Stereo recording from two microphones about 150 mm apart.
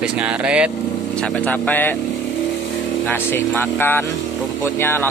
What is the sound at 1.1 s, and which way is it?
Speech, 5° left (ahead or behind).